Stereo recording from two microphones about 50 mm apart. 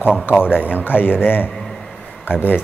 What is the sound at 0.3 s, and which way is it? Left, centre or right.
Speech, left.